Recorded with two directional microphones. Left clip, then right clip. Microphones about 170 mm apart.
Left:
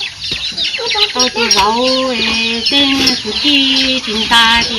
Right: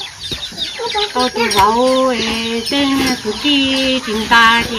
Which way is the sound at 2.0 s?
15° left (ahead or behind).